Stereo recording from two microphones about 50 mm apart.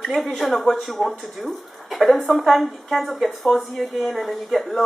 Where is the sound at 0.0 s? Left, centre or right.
Centre.